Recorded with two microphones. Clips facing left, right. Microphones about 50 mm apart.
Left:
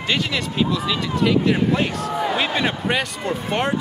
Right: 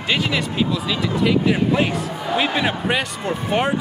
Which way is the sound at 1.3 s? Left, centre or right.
Centre.